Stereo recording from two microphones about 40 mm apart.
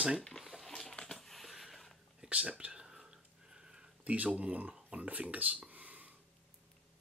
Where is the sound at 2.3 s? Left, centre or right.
Right.